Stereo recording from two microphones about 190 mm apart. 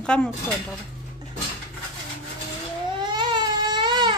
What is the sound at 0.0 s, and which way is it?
Speech, 5° left (ahead or behind).